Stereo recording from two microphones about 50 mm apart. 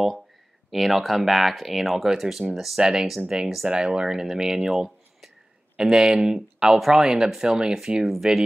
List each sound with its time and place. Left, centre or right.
0.7 s speech: centre